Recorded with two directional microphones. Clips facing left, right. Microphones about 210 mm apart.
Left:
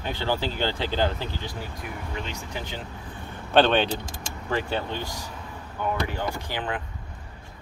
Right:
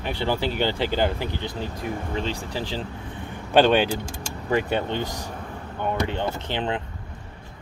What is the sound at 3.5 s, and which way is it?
Speech, 10° right (ahead or behind).